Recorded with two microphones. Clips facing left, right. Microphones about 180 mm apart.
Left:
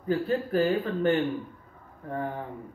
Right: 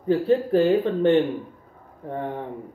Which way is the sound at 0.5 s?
30° right (ahead or behind).